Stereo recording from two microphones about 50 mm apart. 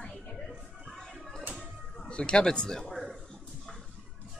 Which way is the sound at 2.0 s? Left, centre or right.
Centre.